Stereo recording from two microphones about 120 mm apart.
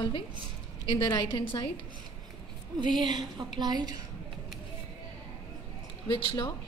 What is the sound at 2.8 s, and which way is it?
A woman's voice, 35° right (ahead or behind).